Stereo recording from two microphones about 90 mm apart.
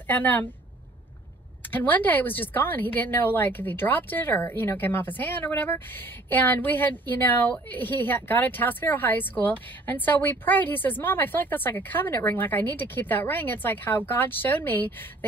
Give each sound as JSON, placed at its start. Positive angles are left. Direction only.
{"t": 0.1, "sound": "speech", "side_deg": 20}
{"t": 1.7, "sound": "speech", "side_deg": 20}